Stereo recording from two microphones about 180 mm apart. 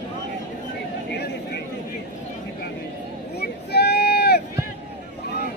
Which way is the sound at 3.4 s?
65° left (ahead or behind).